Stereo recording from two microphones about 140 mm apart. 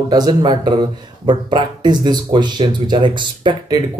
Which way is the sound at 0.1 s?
30° right (ahead or behind).